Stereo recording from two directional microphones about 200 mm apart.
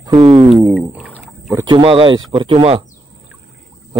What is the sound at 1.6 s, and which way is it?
Speech, 25° right (ahead or behind).